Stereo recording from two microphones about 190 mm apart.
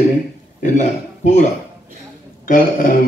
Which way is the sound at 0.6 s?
40° left (ahead or behind).